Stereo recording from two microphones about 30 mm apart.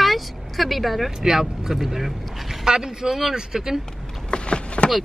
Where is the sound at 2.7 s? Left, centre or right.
Centre.